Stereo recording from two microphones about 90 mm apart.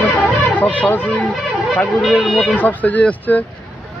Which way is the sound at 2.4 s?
15° left (ahead or behind).